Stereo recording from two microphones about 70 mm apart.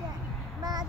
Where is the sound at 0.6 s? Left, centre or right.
Right.